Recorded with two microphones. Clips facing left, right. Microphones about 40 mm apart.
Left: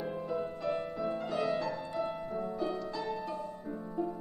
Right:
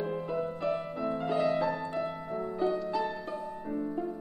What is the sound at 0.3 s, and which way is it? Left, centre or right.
Music, right.